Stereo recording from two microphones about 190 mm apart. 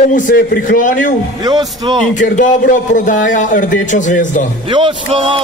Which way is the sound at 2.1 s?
40° left (ahead or behind).